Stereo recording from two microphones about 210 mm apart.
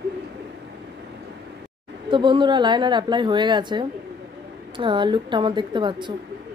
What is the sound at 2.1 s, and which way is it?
A woman's voice, 20° right (ahead or behind).